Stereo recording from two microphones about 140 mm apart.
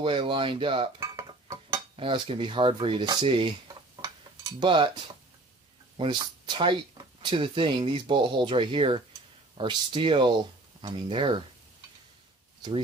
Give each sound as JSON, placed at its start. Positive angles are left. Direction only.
{"t": 0.0, "sound": "speech", "side_deg": -40}
{"t": 0.9, "sound": "dishes", "side_deg": -25}
{"t": 3.2, "sound": "speech", "side_deg": -40}
{"t": 4.0, "sound": "cutlery", "side_deg": -30}
{"t": 5.9, "sound": "speech", "side_deg": -35}